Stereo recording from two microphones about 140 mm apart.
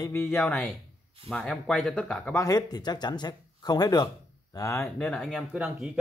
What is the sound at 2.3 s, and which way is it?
Speech, 25° left (ahead or behind).